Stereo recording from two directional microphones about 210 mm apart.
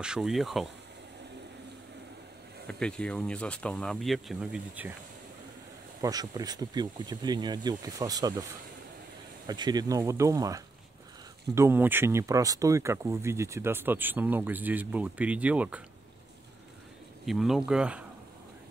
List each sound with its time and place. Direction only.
0.0 s speech: 5° right (ahead or behind)
2.7 s speech: 5° left (ahead or behind)
5.9 s speech: 15° right (ahead or behind)
9.5 s speech: 20° right (ahead or behind)
17.3 s speech: centre (ahead or behind)